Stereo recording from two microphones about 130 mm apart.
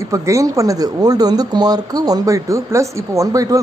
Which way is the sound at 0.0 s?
25° right (ahead or behind).